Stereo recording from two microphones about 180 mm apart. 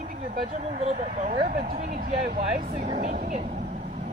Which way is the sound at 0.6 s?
35° right (ahead or behind).